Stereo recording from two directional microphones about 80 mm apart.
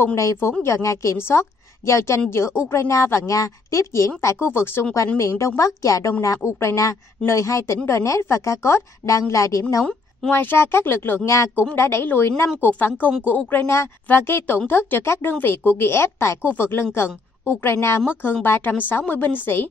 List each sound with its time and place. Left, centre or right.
0.0 s a woman's voice: left
4.4 s a woman's voice: left
4.9 s a woman's voice: left
10.3 s a woman's voice: left
14.0 s a woman's voice: left